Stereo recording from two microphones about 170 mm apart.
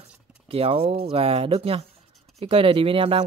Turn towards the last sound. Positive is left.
turn(degrees=-35)  # may be behind; listen again after turning